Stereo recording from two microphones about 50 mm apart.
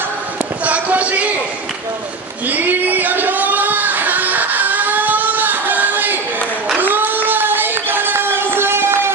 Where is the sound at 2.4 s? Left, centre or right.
Right.